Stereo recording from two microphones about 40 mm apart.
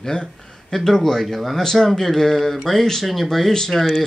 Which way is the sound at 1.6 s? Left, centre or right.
Centre.